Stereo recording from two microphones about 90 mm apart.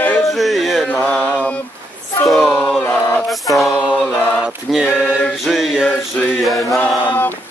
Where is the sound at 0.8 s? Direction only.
15° left (ahead or behind).